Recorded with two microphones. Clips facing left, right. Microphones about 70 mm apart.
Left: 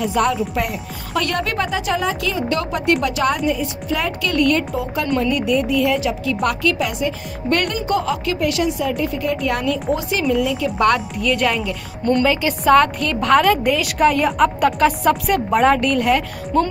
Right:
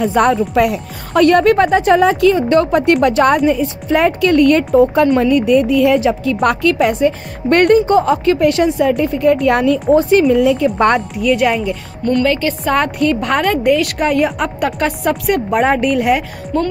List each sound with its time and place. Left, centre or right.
0.0 s speech: right
11.1 s a woman's voice: centre
12.2 s a woman's voice: centre
12.6 s a woman's voice: centre
15.6 s a woman's voice: centre